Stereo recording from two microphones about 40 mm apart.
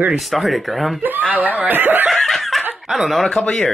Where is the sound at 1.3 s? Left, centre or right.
Right.